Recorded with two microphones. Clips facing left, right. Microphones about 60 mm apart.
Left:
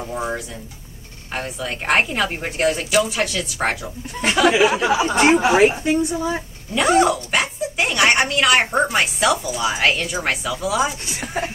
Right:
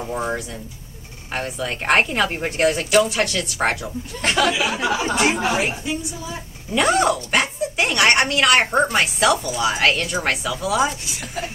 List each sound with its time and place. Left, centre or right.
0.0 s speech: centre
4.5 s speech: left
4.7 s speech: centre
6.7 s speech: centre
11.1 s speech: left